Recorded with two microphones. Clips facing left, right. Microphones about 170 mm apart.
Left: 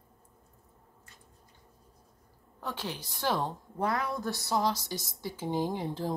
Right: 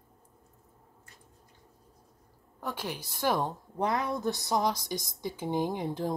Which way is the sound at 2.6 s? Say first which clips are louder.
Right 1 dB; 15° right (ahead or behind).